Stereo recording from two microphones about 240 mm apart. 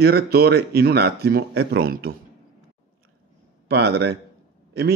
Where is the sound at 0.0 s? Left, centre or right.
Right.